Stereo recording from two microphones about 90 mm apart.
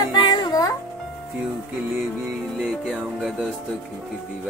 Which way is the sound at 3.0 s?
5° right (ahead or behind).